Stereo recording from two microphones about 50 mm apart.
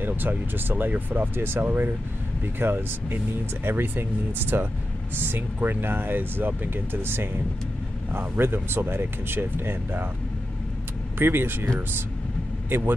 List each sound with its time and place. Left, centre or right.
0.0 s speech: right
11.1 s speech: right
12.6 s speech: right